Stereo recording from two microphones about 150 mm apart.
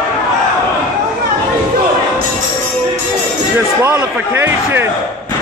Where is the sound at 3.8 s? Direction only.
10° right (ahead or behind).